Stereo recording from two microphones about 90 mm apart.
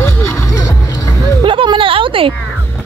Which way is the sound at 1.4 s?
70° right (ahead or behind).